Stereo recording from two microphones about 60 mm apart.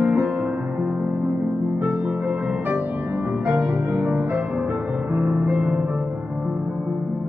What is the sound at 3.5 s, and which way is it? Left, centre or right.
Music, right.